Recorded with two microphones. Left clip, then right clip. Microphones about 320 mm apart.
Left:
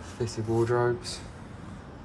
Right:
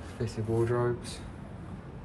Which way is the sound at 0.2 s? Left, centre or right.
Centre.